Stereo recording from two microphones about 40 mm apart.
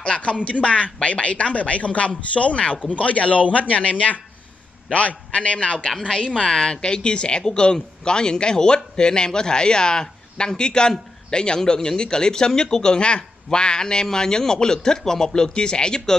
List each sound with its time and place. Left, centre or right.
0.0 s a woman's voice: left